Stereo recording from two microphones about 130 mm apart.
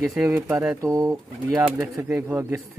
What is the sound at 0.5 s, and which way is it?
Speech, 5° right (ahead or behind).